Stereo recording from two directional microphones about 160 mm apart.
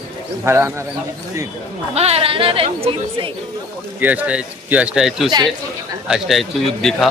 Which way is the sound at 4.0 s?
10° right (ahead or behind).